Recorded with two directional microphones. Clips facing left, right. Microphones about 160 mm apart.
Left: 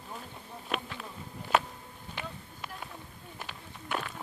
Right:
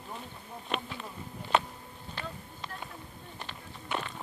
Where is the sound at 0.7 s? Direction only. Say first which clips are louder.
Even; 5° left (ahead or behind).